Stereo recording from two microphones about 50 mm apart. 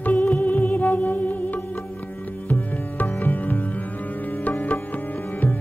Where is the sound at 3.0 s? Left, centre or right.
Left.